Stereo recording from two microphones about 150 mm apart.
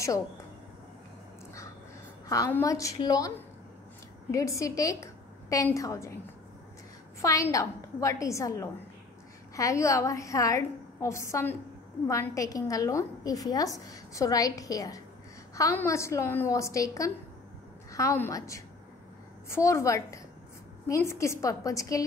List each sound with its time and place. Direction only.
2.2 s a woman's voice: 20° left (ahead or behind)
7.2 s a woman's voice: 20° left (ahead or behind)